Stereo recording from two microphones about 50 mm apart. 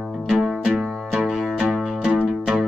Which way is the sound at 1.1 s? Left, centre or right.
Centre.